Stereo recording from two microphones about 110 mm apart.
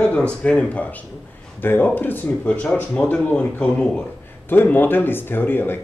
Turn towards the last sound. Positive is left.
turn(degrees=20)  # may be behind; listen again after turning